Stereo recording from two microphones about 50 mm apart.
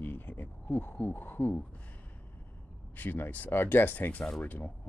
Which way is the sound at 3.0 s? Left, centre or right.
Left.